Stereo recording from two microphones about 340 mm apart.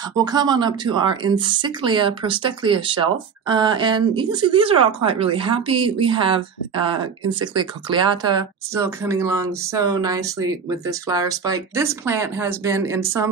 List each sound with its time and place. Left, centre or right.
0.1 s speech: centre